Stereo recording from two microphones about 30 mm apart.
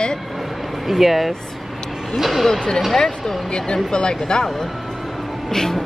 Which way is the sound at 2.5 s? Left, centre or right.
Left.